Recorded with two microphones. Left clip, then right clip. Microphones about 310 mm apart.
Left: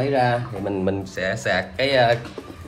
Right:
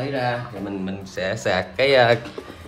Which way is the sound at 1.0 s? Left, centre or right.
Centre.